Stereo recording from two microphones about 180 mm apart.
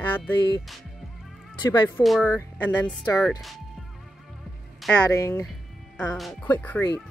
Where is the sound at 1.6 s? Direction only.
25° left (ahead or behind).